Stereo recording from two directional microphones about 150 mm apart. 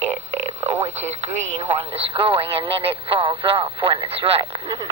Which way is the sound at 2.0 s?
40° right (ahead or behind).